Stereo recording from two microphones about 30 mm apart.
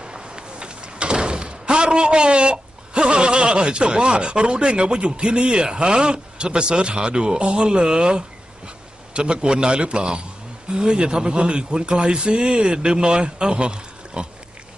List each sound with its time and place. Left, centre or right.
0.0 s a man's voice: right